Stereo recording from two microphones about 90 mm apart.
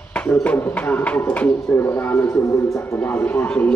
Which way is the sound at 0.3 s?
15° left (ahead or behind).